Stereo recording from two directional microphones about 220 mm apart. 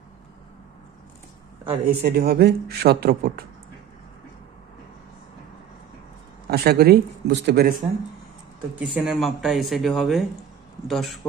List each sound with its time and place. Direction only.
1.9 s speech: 45° right (ahead or behind)
6.5 s speech: 45° right (ahead or behind)
8.7 s speech: 5° right (ahead or behind)